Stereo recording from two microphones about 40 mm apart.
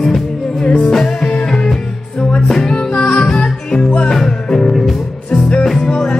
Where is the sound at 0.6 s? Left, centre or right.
Centre.